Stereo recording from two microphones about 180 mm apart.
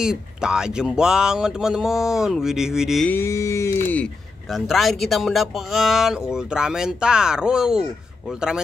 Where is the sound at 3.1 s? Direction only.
15° left (ahead or behind).